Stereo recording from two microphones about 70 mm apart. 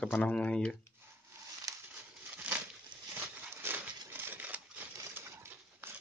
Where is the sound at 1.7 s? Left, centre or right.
Right.